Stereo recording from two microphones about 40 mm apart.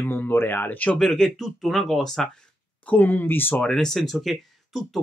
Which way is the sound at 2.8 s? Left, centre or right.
Left.